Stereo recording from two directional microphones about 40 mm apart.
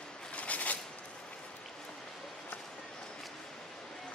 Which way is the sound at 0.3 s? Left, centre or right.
Left.